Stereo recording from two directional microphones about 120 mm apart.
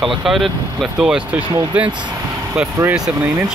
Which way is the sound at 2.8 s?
20° right (ahead or behind).